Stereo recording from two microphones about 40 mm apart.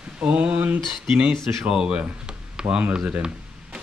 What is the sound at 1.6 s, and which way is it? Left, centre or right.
Speech, right.